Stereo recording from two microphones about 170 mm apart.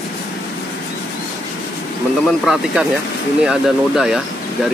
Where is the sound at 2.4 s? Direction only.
Centre (ahead or behind).